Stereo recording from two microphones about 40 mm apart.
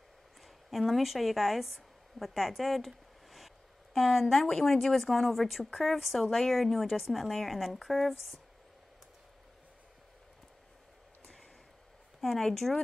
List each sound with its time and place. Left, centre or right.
0.7 s a woman's voice: centre
12.2 s a woman's voice: centre